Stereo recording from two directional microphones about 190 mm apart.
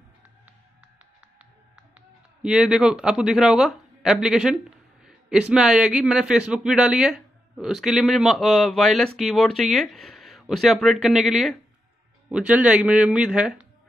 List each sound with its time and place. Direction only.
2.0 s a man's voice: 5° right (ahead or behind)